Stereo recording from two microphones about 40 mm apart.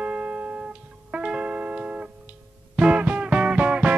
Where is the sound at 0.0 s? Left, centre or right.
Right.